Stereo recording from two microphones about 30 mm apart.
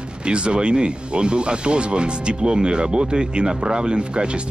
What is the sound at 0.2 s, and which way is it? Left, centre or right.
Speech, right.